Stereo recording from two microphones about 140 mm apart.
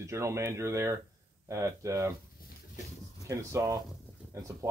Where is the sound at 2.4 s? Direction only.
90° left.